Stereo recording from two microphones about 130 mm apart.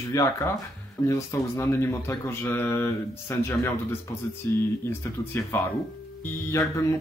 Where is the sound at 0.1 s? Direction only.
25° left (ahead or behind).